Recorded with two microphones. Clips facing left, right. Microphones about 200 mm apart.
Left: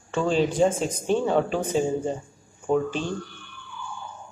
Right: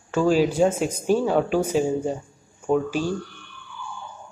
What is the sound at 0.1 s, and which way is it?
Speech, 5° right (ahead or behind).